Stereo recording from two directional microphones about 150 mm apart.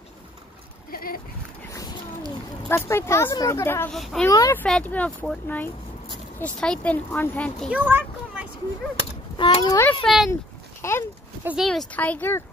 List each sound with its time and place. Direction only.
0.9 s a sound: 75° left (ahead or behind)
2.7 s a woman's voice: 15° left (ahead or behind)
3.9 s speech: centre (ahead or behind)
4.3 s speech: 20° left (ahead or behind)
4.6 s a woman's voice: 10° left (ahead or behind)
7.7 s a sound: 10° right (ahead or behind)
9.4 s a child's voice: 30° left (ahead or behind)
10.0 s speech: centre (ahead or behind)
10.8 s speech: 15° left (ahead or behind)
11.4 s a woman's voice: centre (ahead or behind); by 12.4 s 15° left (ahead or behind)